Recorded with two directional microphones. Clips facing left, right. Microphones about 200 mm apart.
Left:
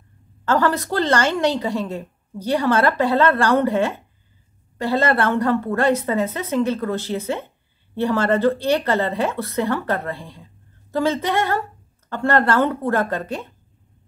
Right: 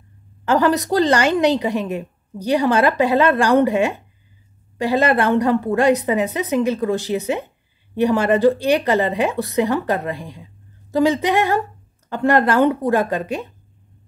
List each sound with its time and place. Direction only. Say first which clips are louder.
0.5 s a woman's voice: right 3 dB; 15° right (ahead or behind)